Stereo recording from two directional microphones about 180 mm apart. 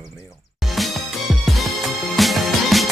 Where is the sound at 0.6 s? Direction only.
Centre (ahead or behind).